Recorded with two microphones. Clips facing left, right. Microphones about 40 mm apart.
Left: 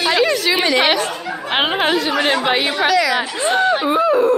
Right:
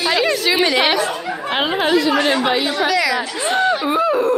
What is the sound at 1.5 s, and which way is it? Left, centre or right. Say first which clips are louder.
Speech: left 1 dB; left.